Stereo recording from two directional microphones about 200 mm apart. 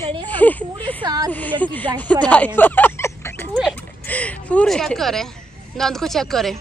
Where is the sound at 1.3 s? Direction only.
10° left (ahead or behind).